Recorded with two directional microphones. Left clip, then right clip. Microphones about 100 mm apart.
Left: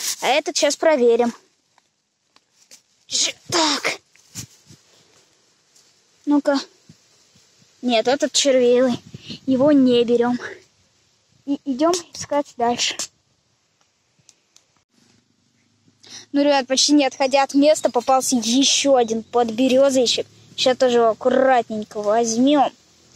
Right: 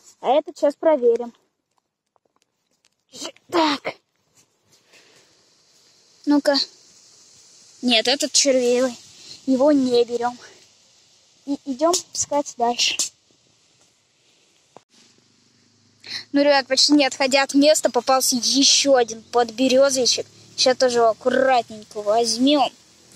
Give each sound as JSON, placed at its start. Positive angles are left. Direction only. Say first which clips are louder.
{"t": 0.1, "sound": "speech", "louder": "even", "side_deg": 30}
{"t": 3.1, "sound": "speech", "louder": "left 7 dB", "side_deg": 25}
{"t": 6.2, "sound": "speech", "louder": "right 1 dB", "side_deg": 25}
{"t": 7.8, "sound": "speech", "louder": "left 1 dB", "side_deg": 25}
{"t": 9.6, "sound": "speech", "louder": "left 2 dB", "side_deg": 30}
{"t": 16.0, "sound": "a sound", "louder": "right 1 dB", "side_deg": 30}
{"t": 17.1, "sound": "speech", "louder": "left 1 dB", "side_deg": 20}
{"t": 18.9, "sound": "speech", "louder": "left 1 dB", "side_deg": 25}
{"t": 19.9, "sound": "speech", "louder": "left 2 dB", "side_deg": 45}
{"t": 21.1, "sound": "speech", "louder": "left 2 dB", "side_deg": 25}